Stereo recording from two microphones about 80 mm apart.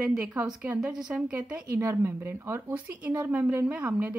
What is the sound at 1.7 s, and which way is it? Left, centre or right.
Speech, right.